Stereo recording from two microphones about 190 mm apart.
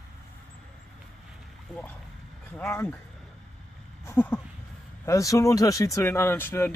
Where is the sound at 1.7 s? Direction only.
5° left (ahead or behind).